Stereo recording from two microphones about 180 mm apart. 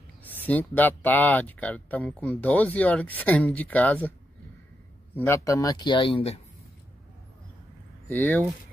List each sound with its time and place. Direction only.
0.2 s speech: 10° left (ahead or behind)
5.1 s speech: 15° left (ahead or behind); by 6.4 s 30° left (ahead or behind)
8.1 s speech: 10° left (ahead or behind)